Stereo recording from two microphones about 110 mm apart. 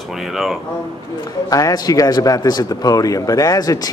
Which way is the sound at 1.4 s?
35° left (ahead or behind).